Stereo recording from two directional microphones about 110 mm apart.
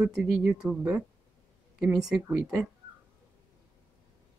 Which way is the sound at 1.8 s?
5° right (ahead or behind).